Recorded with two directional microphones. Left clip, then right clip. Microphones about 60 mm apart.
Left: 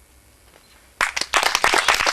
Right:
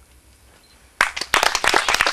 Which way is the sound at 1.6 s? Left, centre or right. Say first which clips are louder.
Left 1 dB; left.